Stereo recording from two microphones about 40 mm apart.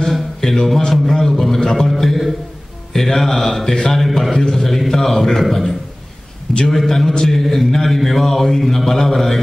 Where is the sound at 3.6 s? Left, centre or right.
Centre.